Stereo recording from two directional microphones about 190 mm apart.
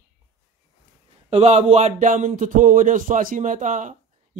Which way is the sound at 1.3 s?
35° right (ahead or behind).